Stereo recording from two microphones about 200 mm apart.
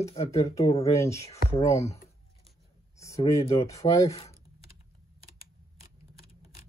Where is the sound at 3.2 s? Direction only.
15° left (ahead or behind).